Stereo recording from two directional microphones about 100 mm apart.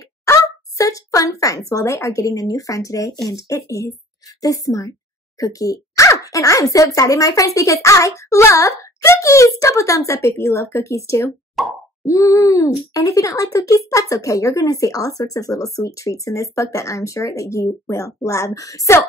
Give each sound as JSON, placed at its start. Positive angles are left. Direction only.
{"t": 0.2, "sound": "a sound", "side_deg": 35}
{"t": 1.7, "sound": "speech", "side_deg": 30}
{"t": 11.6, "sound": "plop", "side_deg": 0}
{"t": 12.0, "sound": "speech", "side_deg": 35}